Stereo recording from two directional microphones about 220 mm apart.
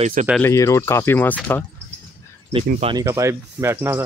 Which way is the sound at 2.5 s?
25° right (ahead or behind).